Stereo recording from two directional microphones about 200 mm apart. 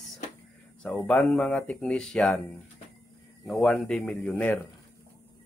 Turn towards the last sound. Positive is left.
turn(degrees=10)  # may be behind; listen again after turning